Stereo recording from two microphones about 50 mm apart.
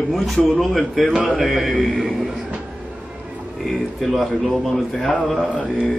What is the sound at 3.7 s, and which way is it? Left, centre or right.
Speech, centre.